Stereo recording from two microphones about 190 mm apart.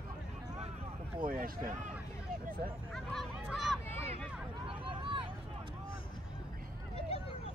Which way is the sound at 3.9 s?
30° right (ahead or behind).